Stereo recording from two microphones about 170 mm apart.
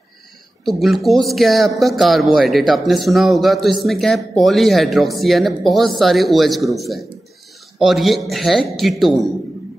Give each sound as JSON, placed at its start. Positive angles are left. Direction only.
{"t": 0.7, "sound": "speech", "side_deg": 0}